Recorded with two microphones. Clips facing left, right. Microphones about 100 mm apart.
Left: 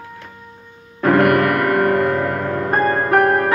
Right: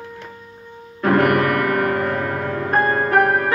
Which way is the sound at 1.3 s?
40° left (ahead or behind).